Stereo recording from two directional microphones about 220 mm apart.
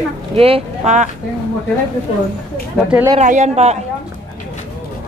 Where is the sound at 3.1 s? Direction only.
30° right (ahead or behind).